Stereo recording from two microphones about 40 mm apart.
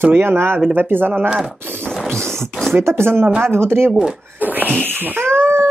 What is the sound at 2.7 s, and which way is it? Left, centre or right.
Speech, right.